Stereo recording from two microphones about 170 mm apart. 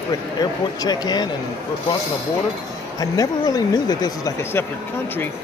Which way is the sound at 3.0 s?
20° left (ahead or behind).